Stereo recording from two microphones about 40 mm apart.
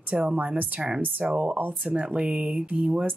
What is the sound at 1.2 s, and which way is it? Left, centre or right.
Speech, right.